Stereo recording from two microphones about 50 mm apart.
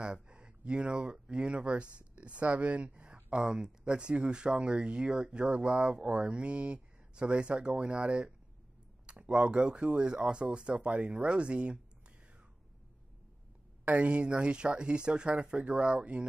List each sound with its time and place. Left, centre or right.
0.0 s speech: centre
13.8 s speech: right